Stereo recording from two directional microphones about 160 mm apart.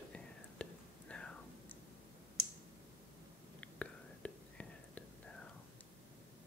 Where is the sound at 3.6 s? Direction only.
10° left (ahead or behind).